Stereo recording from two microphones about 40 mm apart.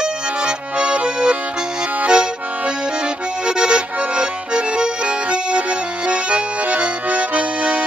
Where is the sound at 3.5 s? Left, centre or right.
Right.